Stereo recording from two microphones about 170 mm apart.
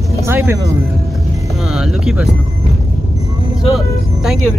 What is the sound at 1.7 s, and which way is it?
Speech, centre (ahead or behind).